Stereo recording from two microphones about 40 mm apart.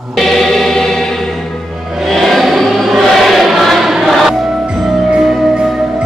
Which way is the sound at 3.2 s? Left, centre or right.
Centre.